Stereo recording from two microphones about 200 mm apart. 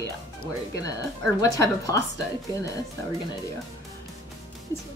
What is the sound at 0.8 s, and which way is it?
Speech, 15° left (ahead or behind).